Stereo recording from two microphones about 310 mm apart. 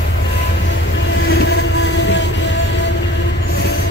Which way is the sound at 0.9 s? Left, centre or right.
Left.